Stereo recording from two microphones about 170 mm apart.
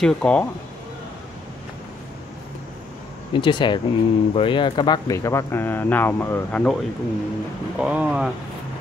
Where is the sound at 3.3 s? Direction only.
25° left (ahead or behind); by 6.8 s 5° left (ahead or behind).